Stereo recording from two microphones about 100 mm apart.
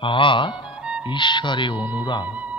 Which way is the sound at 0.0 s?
55° left (ahead or behind).